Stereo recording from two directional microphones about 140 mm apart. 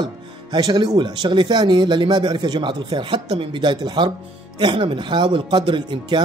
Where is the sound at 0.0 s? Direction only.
30° right (ahead or behind).